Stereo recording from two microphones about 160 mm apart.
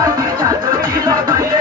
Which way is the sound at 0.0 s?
20° right (ahead or behind).